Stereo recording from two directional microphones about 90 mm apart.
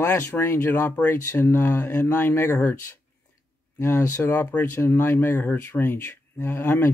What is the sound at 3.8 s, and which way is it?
Speech, 30° left (ahead or behind).